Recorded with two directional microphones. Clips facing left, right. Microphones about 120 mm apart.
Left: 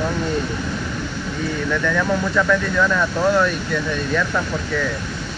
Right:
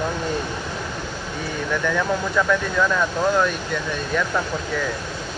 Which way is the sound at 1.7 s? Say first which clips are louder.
Left 1 dB; 15° right (ahead or behind).